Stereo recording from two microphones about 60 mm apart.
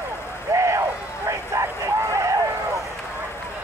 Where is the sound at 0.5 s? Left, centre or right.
Right.